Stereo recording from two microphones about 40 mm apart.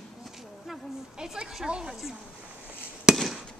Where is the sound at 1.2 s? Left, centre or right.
Centre.